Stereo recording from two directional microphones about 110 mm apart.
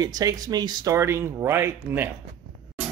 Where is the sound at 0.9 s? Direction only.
25° right (ahead or behind).